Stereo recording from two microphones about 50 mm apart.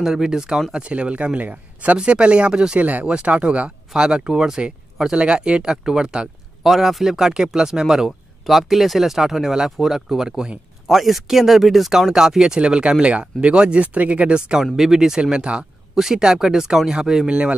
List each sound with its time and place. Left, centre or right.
0.0 s speech: centre
0.7 s speech: right
2.0 s speech: centre
2.8 s speech: right; by 6.2 s centre
6.6 s speech: centre
8.5 s speech: centre
14.6 s speech: centre
17.3 s speech: right